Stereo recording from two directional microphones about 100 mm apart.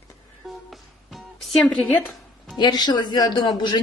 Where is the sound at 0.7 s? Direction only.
Centre (ahead or behind).